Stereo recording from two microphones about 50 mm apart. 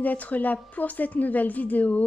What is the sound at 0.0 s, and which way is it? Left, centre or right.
A woman's voice, left.